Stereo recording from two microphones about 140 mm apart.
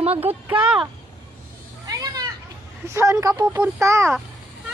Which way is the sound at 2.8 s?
20° right (ahead or behind).